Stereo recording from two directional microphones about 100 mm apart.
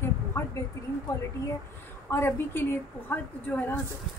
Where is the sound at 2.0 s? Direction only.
25° left (ahead or behind).